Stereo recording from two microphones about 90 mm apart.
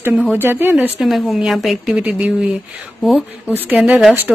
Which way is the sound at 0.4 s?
25° right (ahead or behind).